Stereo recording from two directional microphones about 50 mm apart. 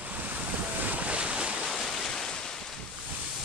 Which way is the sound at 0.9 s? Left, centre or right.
Right.